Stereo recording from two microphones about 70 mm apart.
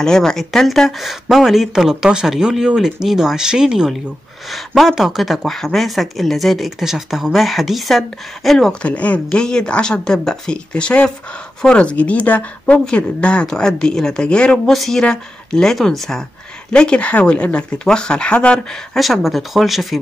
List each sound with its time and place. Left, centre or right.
0.0 s speech: centre
8.8 s speech: centre
14.7 s speech: centre
18.9 s speech: centre